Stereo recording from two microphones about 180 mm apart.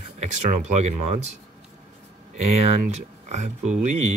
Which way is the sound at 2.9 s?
40° right (ahead or behind).